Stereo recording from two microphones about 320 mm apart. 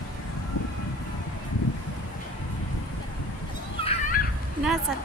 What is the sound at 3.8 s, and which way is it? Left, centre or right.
Children playing, left.